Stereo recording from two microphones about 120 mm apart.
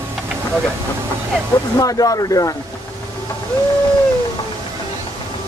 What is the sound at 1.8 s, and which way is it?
Speech, 30° left (ahead or behind).